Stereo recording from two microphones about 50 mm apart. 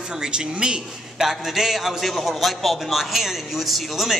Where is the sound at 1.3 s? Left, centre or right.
Centre.